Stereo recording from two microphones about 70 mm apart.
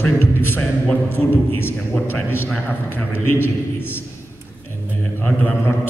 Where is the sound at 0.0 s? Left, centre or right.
Left.